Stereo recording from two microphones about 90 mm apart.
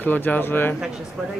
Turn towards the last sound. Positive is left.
turn(degrees=25)  # may be behind; listen again after turning